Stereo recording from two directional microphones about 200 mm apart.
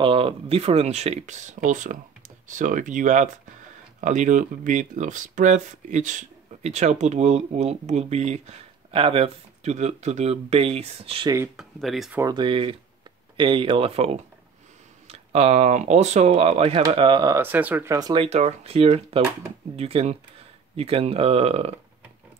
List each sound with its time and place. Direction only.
0.0 s speech: 25° right (ahead or behind)
11.3 s speech: 10° right (ahead or behind)
12.2 s speech: 20° right (ahead or behind)